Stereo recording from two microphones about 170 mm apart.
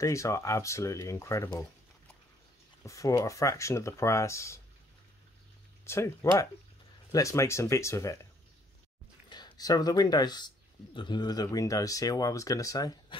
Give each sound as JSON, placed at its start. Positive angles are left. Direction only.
{"t": 0.0, "sound": "speech", "side_deg": 15}
{"t": 2.8, "sound": "speech", "side_deg": 20}
{"t": 5.9, "sound": "speech", "side_deg": 15}
{"t": 9.3, "sound": "speech", "side_deg": 25}